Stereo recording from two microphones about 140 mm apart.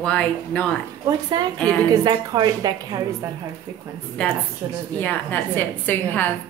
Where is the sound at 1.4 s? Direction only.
30° right (ahead or behind).